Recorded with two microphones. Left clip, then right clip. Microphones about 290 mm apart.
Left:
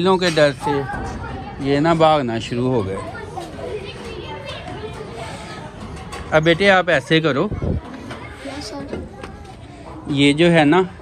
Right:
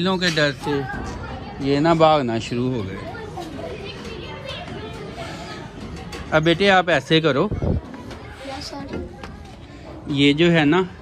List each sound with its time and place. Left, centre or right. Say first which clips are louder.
0.0 s speech: left 5 dB; centre
1.6 s speech: left 1 dB; centre
6.3 s speech: left 2 dB; centre
10.1 s speech: left 3 dB; centre